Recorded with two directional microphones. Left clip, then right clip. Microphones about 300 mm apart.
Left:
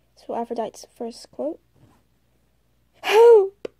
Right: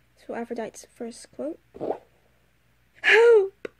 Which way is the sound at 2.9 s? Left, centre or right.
Centre.